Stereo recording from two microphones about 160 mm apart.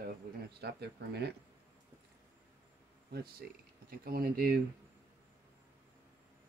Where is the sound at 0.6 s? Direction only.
90° right.